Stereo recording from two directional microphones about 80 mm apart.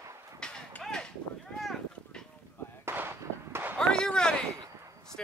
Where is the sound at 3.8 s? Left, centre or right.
Centre.